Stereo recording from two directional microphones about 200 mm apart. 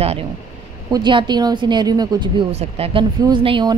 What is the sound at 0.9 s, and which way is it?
A woman's voice, 25° right (ahead or behind).